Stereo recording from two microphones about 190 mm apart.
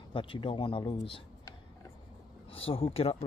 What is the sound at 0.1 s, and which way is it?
A man's voice, 25° left (ahead or behind).